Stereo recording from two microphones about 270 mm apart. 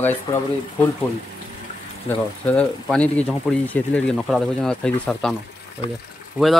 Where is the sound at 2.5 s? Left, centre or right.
Centre.